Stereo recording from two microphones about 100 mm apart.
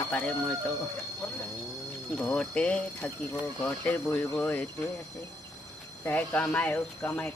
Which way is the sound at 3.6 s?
20° left (ahead or behind).